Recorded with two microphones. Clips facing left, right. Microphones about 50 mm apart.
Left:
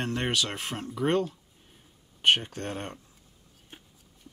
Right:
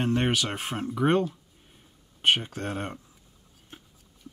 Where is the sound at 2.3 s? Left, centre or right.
Centre.